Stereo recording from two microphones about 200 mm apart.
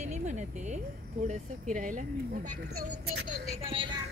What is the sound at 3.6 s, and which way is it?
Speech, 25° right (ahead or behind).